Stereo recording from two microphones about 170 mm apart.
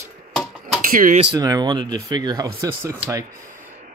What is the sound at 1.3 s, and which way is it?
Speech, 20° right (ahead or behind).